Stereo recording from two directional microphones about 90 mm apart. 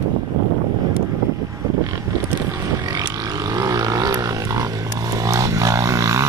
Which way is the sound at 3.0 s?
40° right (ahead or behind).